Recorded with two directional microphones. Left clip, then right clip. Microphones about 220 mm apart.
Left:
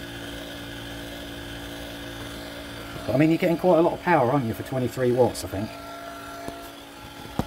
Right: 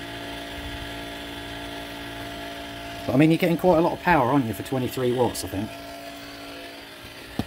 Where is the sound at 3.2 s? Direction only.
30° right (ahead or behind).